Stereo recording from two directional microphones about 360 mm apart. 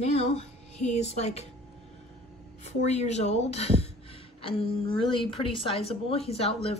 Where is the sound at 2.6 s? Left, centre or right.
Centre.